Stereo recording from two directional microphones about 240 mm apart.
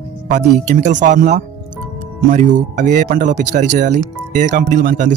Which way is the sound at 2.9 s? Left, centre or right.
Right.